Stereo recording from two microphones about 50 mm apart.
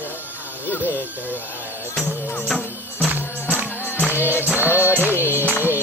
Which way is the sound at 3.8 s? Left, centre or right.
Left.